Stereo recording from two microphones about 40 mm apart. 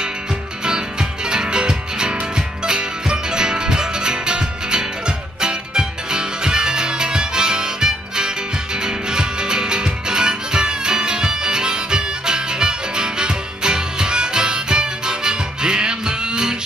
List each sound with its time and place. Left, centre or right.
0.7 s music: centre